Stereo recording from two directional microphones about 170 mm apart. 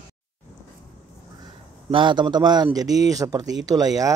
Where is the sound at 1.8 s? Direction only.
30° right (ahead or behind).